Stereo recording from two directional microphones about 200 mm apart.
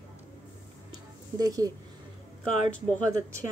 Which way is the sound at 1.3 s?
20° right (ahead or behind).